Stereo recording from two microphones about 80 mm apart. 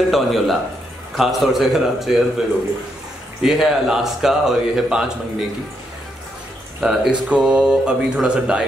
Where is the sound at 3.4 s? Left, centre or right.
Centre.